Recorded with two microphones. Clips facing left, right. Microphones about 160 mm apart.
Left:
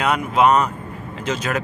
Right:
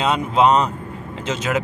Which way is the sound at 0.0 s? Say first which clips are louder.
Even; 25° right (ahead or behind).